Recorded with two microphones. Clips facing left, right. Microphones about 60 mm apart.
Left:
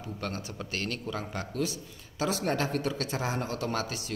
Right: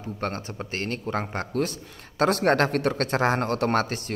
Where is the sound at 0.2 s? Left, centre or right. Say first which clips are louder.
Right 6 dB; right.